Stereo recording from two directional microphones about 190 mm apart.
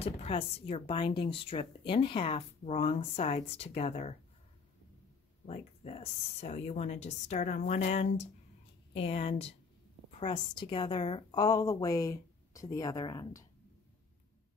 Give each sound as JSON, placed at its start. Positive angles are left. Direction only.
{"t": 0.0, "sound": "speech", "side_deg": 30}
{"t": 5.5, "sound": "a woman's voice", "side_deg": 35}